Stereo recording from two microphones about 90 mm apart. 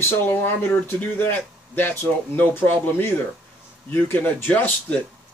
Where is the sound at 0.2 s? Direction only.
20° left (ahead or behind).